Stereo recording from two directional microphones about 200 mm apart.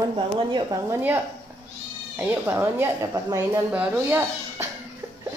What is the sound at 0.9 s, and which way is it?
A woman's voice, 10° right (ahead or behind).